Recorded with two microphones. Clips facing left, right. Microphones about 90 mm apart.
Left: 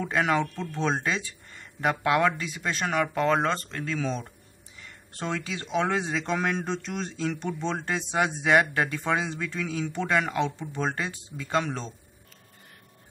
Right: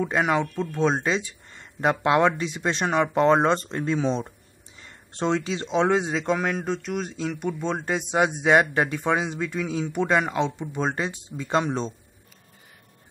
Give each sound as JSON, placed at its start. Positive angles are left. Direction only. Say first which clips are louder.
{"t": 0.0, "sound": "speech", "louder": "right 2 dB", "side_deg": -15}
{"t": 6.3, "sound": "a man's voice", "louder": "right 1 dB", "side_deg": -5}